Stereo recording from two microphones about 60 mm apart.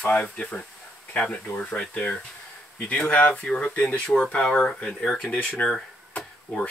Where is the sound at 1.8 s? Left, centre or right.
Centre.